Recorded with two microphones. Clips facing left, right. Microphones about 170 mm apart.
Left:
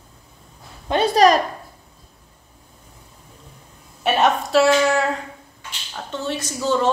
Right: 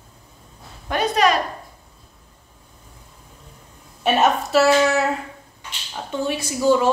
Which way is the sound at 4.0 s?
Centre (ahead or behind).